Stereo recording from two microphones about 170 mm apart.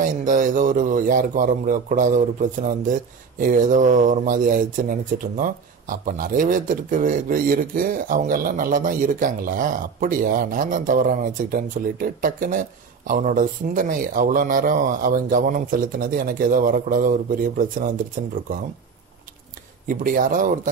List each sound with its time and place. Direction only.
0.0 s speech: 50° right (ahead or behind)
19.9 s speech: 55° right (ahead or behind)